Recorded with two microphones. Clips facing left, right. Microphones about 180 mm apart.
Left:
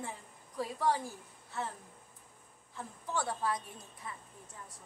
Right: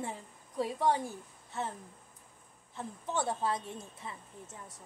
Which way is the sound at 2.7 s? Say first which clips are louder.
Right 2 dB; 20° right (ahead or behind).